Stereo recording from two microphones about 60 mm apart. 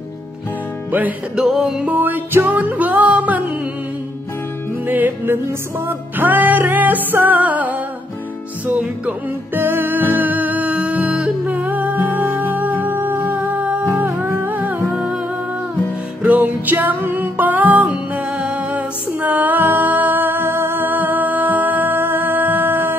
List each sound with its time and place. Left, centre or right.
1.3 s music: centre
1.9 s music: right
4.8 s music: right
9.5 s music: right
16.2 s music: right
17.8 s music: centre; by 22.9 s right